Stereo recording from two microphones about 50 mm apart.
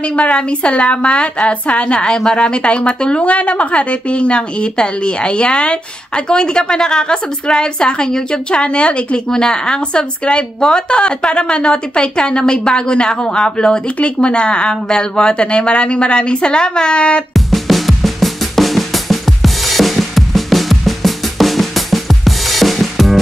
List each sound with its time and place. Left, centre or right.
0.0 s a woman's voice: left
17.3 s drum: centre